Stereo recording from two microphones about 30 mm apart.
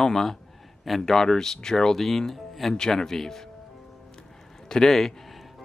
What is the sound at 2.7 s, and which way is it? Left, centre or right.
Speech, centre.